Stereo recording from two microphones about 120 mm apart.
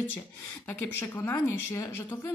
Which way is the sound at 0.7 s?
15° left (ahead or behind).